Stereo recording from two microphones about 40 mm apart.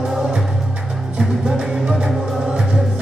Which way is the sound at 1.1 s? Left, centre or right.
Right.